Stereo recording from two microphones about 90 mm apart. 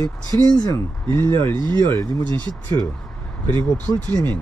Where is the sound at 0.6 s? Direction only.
55° right (ahead or behind).